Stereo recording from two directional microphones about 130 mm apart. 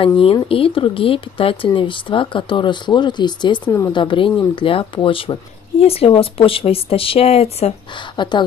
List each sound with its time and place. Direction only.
0.5 s speech: 45° left (ahead or behind)
3.6 s speech: 20° left (ahead or behind)
3.9 s speech: 40° left (ahead or behind)
8.2 s speech: 35° left (ahead or behind)